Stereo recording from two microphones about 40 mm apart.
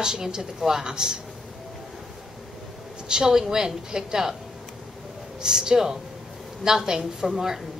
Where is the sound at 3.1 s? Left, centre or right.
Centre.